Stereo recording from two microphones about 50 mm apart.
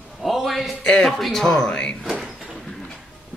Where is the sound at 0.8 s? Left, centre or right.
Centre.